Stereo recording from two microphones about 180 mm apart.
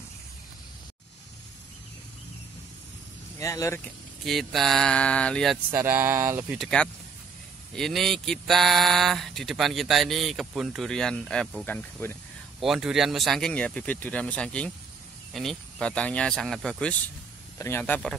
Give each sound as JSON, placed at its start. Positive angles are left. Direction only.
{"t": 3.3, "sound": "speech", "side_deg": 15}
{"t": 4.2, "sound": "speech", "side_deg": 0}
{"t": 5.7, "sound": "speech", "side_deg": -10}
{"t": 6.6, "sound": "speech", "side_deg": 5}
{"t": 12.6, "sound": "speech", "side_deg": -5}
{"t": 17.6, "sound": "speech", "side_deg": 15}